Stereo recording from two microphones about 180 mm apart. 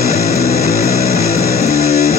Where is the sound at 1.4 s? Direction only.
55° left (ahead or behind).